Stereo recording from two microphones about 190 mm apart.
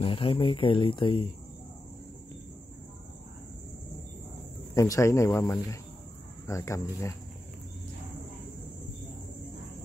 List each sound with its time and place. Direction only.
0.0 s speech: 25° left (ahead or behind)
4.7 s speech: 15° left (ahead or behind)